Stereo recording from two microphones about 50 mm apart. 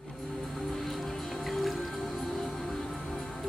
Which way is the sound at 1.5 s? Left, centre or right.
Centre.